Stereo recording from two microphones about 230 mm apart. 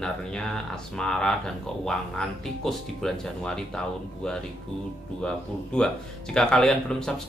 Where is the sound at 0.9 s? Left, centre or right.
Centre.